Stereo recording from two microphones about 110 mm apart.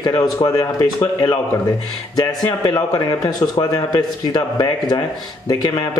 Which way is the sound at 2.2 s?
35° left (ahead or behind).